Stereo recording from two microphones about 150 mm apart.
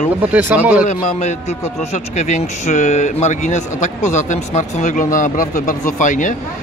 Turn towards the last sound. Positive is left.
turn(degrees=60)  # may be behind; listen again after turning